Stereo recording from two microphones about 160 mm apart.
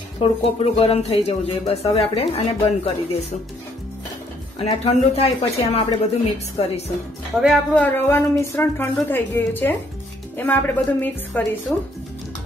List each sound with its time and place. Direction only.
0.2 s speech: 40° left (ahead or behind)
4.6 s speech: 40° left (ahead or behind)
7.4 s a woman's voice: 10° left (ahead or behind)